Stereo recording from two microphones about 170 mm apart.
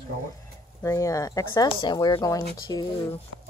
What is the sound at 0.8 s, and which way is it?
Speech, 20° left (ahead or behind).